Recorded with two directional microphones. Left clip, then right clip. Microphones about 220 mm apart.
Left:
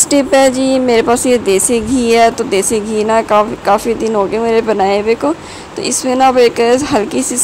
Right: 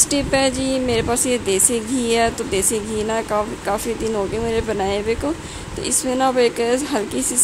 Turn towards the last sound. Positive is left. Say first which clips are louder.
# left 8 dB
turn(degrees=10)  # may be behind; listen again after turning